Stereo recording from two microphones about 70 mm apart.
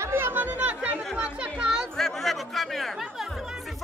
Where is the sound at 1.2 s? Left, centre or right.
Centre.